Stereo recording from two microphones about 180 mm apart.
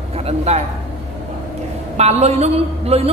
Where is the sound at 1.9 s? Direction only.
35° right (ahead or behind).